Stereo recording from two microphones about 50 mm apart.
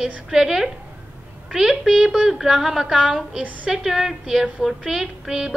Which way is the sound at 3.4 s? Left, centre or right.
Right.